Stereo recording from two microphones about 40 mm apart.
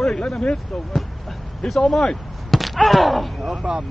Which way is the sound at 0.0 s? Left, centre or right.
Centre.